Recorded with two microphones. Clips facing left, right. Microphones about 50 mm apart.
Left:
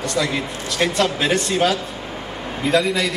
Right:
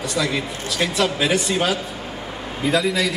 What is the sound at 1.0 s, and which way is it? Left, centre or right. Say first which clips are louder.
Speech: right 1 dB; centre.